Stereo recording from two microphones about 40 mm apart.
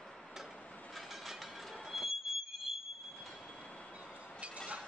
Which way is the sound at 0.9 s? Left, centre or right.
Centre.